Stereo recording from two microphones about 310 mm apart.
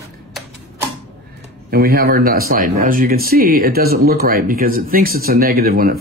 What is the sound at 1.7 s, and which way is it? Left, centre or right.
Speech, right.